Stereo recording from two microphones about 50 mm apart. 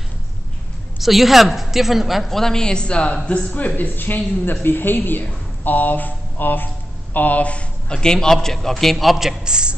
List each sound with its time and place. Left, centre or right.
0.9 s a woman's voice: centre
3.5 s speech: left
5.6 s a sound: left
7.2 s a man's voice: left; by 9.4 s centre
9.4 s a woman's voice: centre